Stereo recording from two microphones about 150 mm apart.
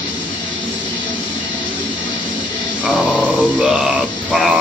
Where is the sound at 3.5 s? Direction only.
5° right (ahead or behind).